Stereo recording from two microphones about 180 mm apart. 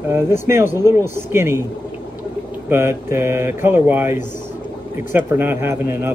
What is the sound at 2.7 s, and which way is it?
A man's voice, 15° right (ahead or behind).